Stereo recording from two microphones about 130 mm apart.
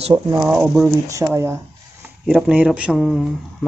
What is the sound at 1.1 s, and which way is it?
Speech, 25° right (ahead or behind).